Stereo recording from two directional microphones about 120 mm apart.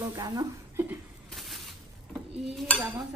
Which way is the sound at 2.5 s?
10° left (ahead or behind).